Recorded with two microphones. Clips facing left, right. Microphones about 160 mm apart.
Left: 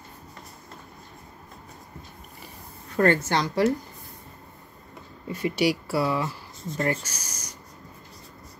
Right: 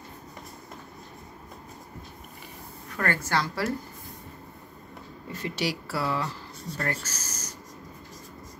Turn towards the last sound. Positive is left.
turn(degrees=10)  # may be behind; listen again after turning